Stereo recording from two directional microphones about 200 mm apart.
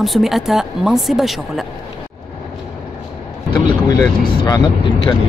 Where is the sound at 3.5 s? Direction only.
20° left (ahead or behind).